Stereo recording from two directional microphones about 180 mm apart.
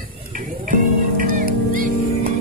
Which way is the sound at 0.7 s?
50° right (ahead or behind).